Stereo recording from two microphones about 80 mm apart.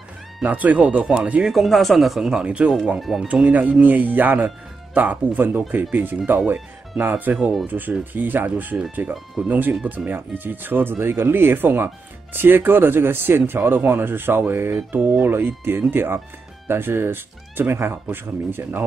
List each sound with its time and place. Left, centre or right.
0.4 s speech: centre
1.5 s speech: centre
3.0 s speech: centre
3.3 s speech: centre
9.1 s speech: centre
9.5 s speech: right